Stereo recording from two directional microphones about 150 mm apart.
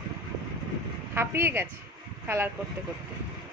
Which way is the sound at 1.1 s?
15° right (ahead or behind).